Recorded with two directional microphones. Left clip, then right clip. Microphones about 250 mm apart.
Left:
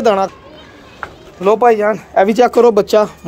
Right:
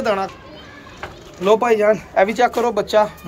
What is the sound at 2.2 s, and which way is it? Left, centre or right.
Speech, left.